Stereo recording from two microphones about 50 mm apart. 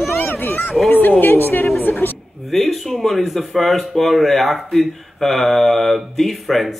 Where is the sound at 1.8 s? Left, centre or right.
Left.